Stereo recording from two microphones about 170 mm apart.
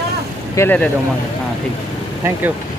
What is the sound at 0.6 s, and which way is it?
Speech, 10° left (ahead or behind).